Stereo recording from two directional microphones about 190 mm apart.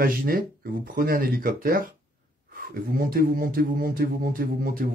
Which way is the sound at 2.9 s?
50° right (ahead or behind).